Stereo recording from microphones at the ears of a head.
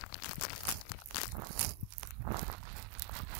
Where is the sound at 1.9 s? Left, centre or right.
Right.